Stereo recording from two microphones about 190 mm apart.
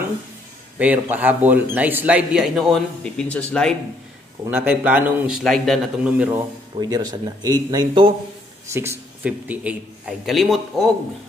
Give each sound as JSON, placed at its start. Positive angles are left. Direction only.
{"t": 0.7, "sound": "a man's voice", "side_deg": -5}
{"t": 4.5, "sound": "a man's voice", "side_deg": -10}
{"t": 6.8, "sound": "speech", "side_deg": -20}
{"t": 8.6, "sound": "a man's voice", "side_deg": -15}